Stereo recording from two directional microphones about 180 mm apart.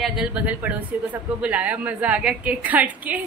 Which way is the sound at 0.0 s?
5° right (ahead or behind).